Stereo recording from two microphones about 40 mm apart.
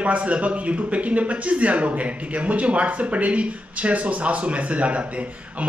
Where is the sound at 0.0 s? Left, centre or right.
Right.